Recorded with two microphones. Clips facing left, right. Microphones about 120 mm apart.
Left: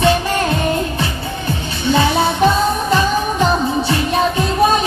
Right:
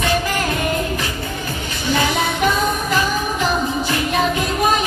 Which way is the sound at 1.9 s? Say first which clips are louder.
Left 4 dB; 30° left (ahead or behind).